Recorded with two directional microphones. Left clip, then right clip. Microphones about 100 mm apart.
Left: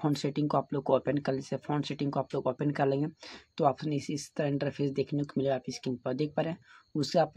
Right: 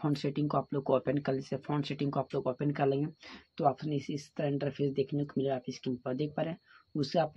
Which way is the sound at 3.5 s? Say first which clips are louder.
Left 2 dB; 45° left (ahead or behind).